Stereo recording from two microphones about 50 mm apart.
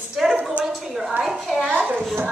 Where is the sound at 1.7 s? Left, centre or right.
Right.